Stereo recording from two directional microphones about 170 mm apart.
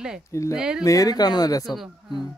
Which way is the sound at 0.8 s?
20° left (ahead or behind).